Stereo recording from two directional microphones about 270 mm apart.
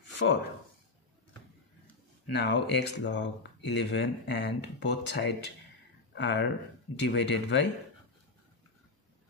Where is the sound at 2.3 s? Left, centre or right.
Left.